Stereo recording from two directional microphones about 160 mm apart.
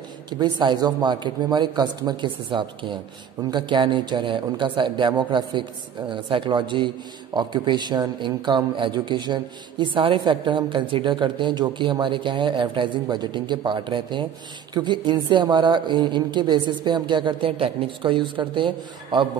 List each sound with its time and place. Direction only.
0.3 s a man's voice: 30° right (ahead or behind)